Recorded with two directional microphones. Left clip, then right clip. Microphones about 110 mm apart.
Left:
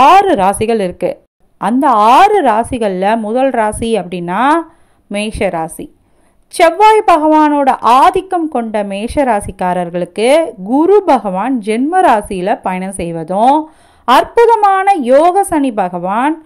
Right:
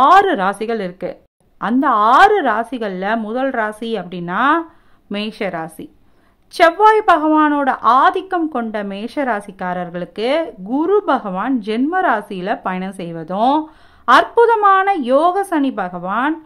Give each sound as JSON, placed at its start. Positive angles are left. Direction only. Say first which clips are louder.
{"t": 0.0, "sound": "a woman's voice", "louder": "left 4 dB", "side_deg": 30}